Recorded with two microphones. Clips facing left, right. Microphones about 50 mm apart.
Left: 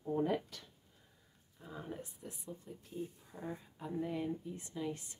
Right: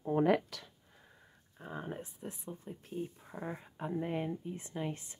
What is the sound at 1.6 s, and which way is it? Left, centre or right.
Speech, right.